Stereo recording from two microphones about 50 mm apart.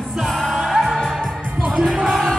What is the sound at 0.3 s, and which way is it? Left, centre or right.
Music, centre.